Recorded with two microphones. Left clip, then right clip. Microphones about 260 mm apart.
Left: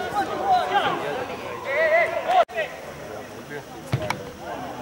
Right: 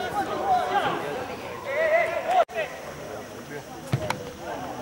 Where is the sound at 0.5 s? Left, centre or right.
Centre.